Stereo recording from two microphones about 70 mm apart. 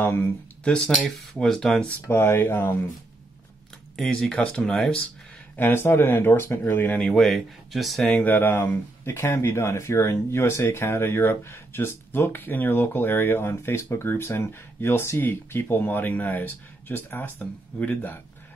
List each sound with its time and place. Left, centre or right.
0.0 s speech: left
0.7 s speech: centre
2.0 s speech: left
3.9 s speech: centre
5.6 s speech: left
7.0 s speech: centre
8.1 s speech: left